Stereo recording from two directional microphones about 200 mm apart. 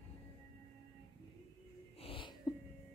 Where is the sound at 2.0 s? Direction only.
25° left (ahead or behind).